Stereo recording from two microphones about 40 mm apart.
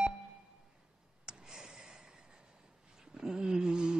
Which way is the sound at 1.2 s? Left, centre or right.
Centre.